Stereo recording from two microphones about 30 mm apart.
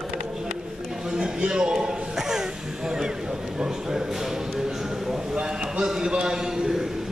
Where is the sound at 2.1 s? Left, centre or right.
Centre.